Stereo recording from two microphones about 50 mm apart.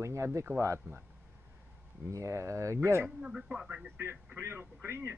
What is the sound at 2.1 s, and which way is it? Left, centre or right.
Speech, right.